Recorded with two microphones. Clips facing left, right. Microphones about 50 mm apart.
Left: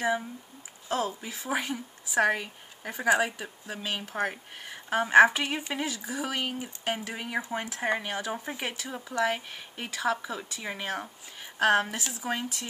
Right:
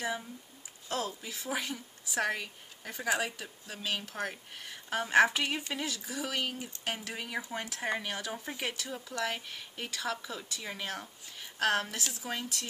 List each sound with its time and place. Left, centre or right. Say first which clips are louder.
0.8 s speech: left 5 dB; centre